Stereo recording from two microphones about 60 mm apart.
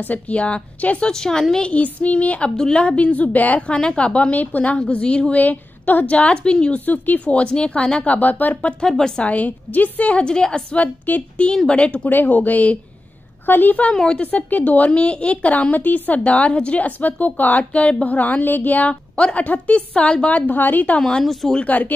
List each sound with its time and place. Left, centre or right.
0.0 s a woman's voice: left
1.0 s a woman's voice: centre
1.7 s a woman's voice: left
8.8 s a woman's voice: centre
9.2 s a woman's voice: left
12.1 s a woman's voice: left
21.0 s a woman's voice: centre
21.5 s a woman's voice: left